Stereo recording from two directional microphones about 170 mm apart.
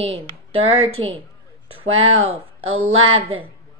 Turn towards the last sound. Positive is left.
turn(degrees=-35)  # may be behind; listen again after turning